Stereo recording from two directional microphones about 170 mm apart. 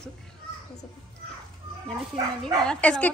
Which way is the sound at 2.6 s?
5° left (ahead or behind).